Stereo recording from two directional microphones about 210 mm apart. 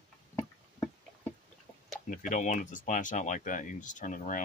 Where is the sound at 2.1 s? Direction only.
40° left (ahead or behind).